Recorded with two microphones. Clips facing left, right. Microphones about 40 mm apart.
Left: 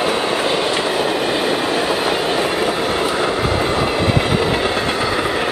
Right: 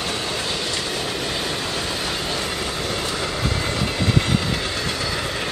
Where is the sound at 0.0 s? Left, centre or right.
Left.